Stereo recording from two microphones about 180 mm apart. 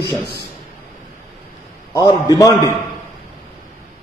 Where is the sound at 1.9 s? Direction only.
20° left (ahead or behind).